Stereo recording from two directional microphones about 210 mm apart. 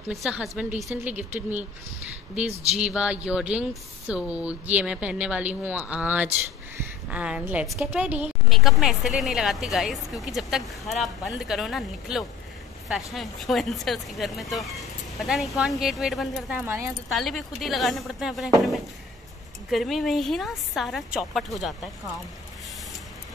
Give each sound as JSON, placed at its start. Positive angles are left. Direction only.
{"t": 0.1, "sound": "a woman's voice", "side_deg": 0}
{"t": 2.4, "sound": "speech", "side_deg": -30}
{"t": 2.8, "sound": "a woman's voice", "side_deg": -5}
{"t": 17.1, "sound": "a woman's voice", "side_deg": 0}